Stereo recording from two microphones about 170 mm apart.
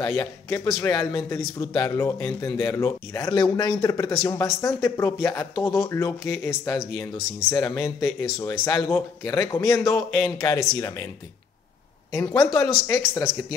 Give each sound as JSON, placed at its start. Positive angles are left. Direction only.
{"t": 0.0, "sound": "a man's voice", "side_deg": 15}
{"t": 12.5, "sound": "speech", "side_deg": 15}